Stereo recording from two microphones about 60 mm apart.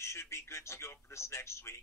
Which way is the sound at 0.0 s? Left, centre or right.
Left.